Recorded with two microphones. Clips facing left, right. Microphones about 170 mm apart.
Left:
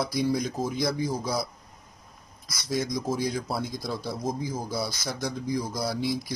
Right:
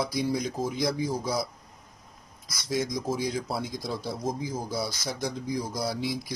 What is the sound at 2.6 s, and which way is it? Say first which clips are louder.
Speech: left 1 dB; 15° right (ahead or behind).